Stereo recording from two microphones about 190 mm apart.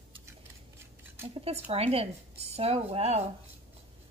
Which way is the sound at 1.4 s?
30° right (ahead or behind).